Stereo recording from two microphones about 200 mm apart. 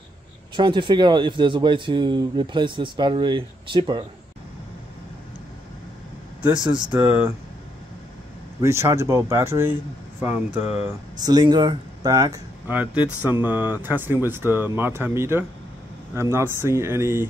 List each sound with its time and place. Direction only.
0.6 s speech: 25° right (ahead or behind)
6.9 s speech: 10° right (ahead or behind)
8.5 s speech: 10° right (ahead or behind)
10.6 s speech: 30° left (ahead or behind)
11.1 s speech: 20° right (ahead or behind)